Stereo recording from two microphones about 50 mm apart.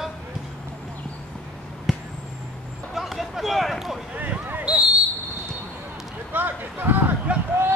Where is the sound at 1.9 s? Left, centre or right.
Centre.